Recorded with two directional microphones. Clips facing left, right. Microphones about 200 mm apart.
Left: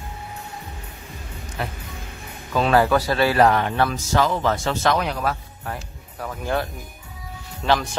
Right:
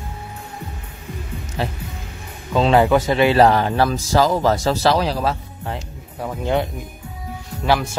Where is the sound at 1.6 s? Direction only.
30° right (ahead or behind).